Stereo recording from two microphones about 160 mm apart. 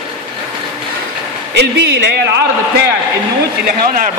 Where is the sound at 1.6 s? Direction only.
90° right.